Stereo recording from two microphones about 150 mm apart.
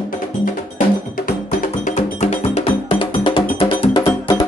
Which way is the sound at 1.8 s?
55° left (ahead or behind).